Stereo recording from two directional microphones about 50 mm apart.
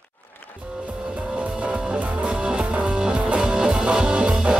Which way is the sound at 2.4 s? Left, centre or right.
Centre.